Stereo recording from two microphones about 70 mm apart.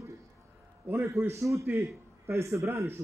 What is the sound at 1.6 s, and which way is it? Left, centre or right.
A man's voice, right.